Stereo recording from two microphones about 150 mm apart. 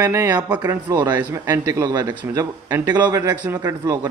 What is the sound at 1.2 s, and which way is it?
Speech, 10° right (ahead or behind).